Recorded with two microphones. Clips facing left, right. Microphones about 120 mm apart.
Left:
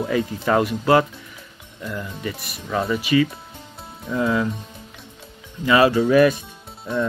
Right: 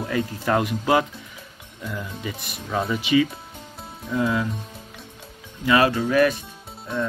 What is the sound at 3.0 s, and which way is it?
Speech, 20° right (ahead or behind).